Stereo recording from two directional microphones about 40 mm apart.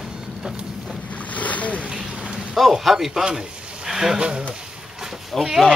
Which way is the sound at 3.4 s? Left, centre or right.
Centre.